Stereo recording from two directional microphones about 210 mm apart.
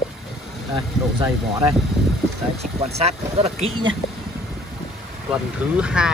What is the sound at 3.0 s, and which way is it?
Speech, 30° right (ahead or behind).